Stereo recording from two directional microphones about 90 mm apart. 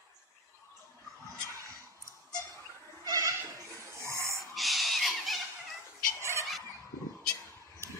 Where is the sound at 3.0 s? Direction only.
40° right (ahead or behind).